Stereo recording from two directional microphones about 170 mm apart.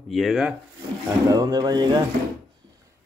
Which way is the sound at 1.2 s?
20° right (ahead or behind).